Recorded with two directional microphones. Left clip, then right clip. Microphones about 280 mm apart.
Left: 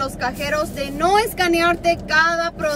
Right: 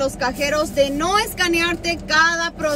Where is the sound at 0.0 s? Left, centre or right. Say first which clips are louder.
Right 3 dB; centre.